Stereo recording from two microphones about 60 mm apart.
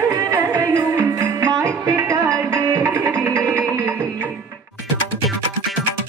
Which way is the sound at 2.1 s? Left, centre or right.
Right.